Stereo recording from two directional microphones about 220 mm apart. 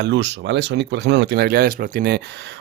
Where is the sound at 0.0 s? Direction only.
50° right (ahead or behind).